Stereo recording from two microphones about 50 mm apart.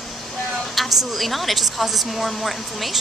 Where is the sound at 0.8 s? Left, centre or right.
Centre.